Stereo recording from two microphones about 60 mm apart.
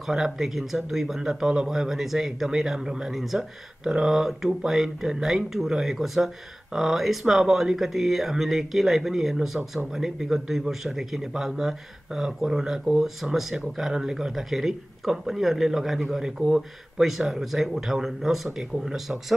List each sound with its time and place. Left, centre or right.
0.0 s speech: centre